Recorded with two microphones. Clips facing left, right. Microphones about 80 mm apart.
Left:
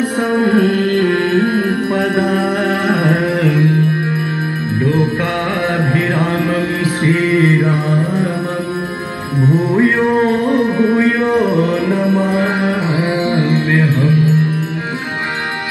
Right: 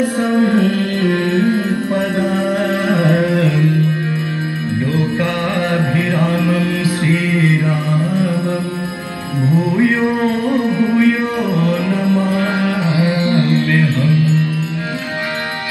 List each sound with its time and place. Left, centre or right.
0.4 s music: left
1.3 s music: left
2.9 s carnatic music: left
5.9 s mantra: left
10.8 s music: left